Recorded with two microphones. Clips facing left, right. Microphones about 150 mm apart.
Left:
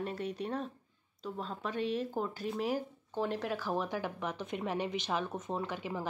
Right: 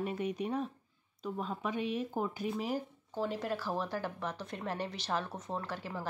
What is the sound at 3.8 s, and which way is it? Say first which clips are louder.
Speech: left 1 dB; 10° left (ahead or behind).